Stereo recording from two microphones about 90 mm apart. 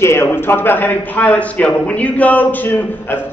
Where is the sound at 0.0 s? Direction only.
30° left (ahead or behind).